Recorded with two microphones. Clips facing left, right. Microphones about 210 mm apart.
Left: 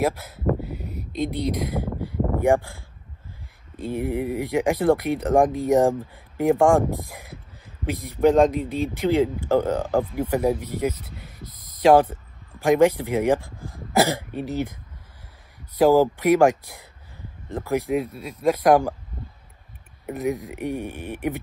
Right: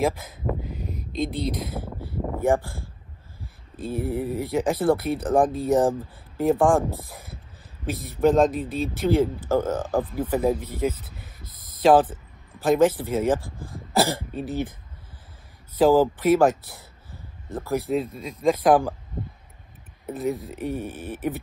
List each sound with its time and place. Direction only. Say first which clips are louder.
0.6 s a sound: left 1 dB; 10° left (ahead or behind)
2.4 s speech: left 1 dB; 15° left (ahead or behind)
9.8 s speech: left 2 dB; centre (ahead or behind)
10.1 s speech: left 1 dB; 10° left (ahead or behind)
15.7 s speech: left 1 dB; 10° left (ahead or behind)
20.1 s speech: left 1 dB; 15° left (ahead or behind)